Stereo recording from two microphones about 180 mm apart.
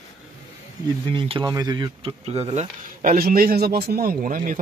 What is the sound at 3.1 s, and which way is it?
A man's voice, 55° right (ahead or behind).